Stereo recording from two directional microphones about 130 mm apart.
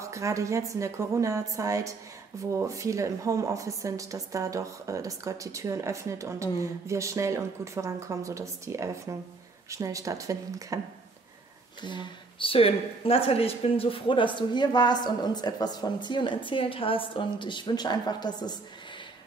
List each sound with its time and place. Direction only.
0.0 s a woman's voice: 25° right (ahead or behind)
11.8 s speech: 35° left (ahead or behind)